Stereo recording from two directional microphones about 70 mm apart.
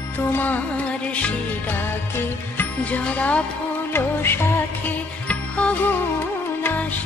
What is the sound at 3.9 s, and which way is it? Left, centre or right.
Music, left.